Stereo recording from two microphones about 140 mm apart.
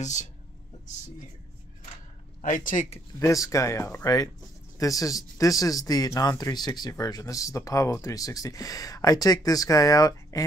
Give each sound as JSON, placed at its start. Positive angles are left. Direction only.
{"t": 0.0, "sound": "speech", "side_deg": 60}
{"t": 2.4, "sound": "speech", "side_deg": 70}
{"t": 3.2, "sound": "speech", "side_deg": 25}